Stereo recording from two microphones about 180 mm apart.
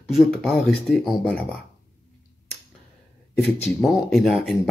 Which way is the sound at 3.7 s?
Centre (ahead or behind).